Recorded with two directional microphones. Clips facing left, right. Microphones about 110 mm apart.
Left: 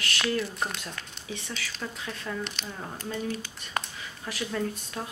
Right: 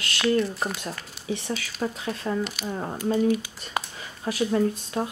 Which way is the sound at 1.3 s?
40° right (ahead or behind).